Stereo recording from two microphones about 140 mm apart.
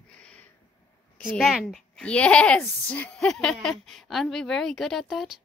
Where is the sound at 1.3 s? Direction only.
Centre (ahead or behind).